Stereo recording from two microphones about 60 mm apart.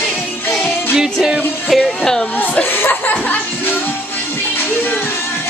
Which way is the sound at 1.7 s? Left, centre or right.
Centre.